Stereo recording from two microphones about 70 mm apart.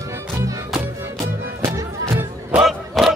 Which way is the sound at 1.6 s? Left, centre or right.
Right.